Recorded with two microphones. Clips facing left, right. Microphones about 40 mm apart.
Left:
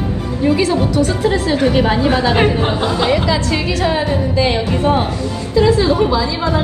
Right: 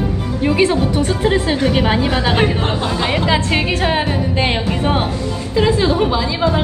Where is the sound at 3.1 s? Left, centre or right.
Right.